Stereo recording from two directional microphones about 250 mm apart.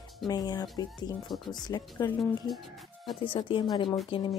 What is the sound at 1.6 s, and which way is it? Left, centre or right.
Speech, centre.